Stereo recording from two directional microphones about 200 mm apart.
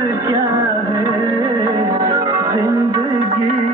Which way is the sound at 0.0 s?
15° right (ahead or behind).